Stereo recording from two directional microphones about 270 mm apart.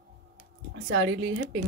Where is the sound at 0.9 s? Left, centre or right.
Right.